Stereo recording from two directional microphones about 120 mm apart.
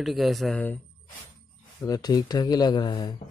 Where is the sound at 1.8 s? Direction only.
30° left (ahead or behind).